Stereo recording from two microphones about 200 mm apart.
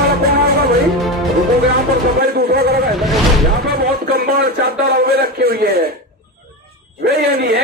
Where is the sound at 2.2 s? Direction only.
50° right (ahead or behind).